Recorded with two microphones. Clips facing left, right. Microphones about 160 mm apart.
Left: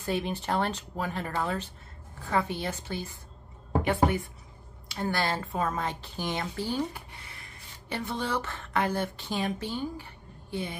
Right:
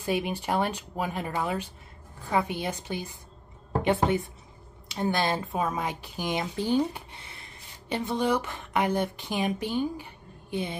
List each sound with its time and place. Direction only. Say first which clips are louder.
0.0 s speech: right 2 dB; 10° right (ahead or behind)